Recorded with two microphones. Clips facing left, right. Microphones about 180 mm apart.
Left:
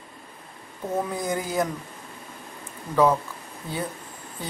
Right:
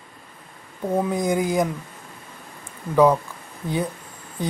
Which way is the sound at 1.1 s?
15° right (ahead or behind).